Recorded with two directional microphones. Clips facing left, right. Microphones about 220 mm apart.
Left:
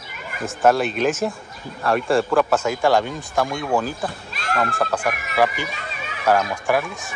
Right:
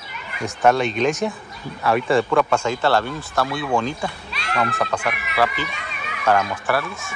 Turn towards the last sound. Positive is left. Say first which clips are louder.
# left 2 dB
turn(degrees=15)  # may be behind; listen again after turning